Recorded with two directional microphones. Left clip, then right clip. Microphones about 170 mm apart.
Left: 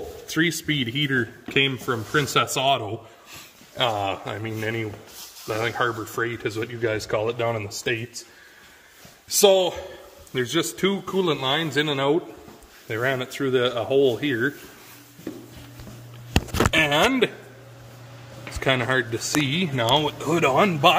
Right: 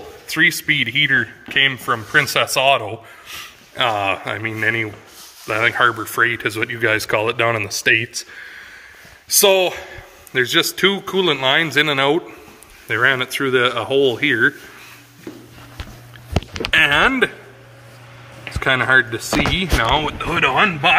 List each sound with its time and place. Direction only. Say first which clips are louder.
0.3 s speech: right 8 dB; centre (ahead or behind)
2.1 s speech: right 6 dB; 10° left (ahead or behind); by 8.1 s 15° right (ahead or behind)
9.4 s speech: right 3 dB; 5° right (ahead or behind)
16.7 s speech: right 7 dB; 10° left (ahead or behind)
18.6 s speech: right 8 dB; 5° left (ahead or behind)
19.9 s speech: right 3 dB; 25° left (ahead or behind)